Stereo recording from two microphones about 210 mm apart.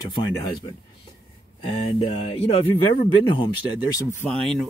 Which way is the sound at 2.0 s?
25° left (ahead or behind).